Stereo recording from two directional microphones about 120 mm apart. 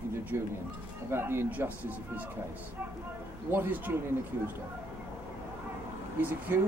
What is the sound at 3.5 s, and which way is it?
Speech, 15° right (ahead or behind).